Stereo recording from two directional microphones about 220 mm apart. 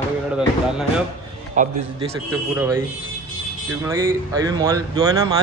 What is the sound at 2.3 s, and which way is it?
Speech, 10° right (ahead or behind).